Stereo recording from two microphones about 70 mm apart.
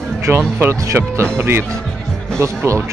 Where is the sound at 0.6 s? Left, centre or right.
Right.